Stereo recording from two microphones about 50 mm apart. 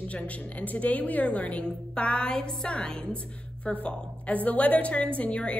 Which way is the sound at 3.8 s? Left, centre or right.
Left.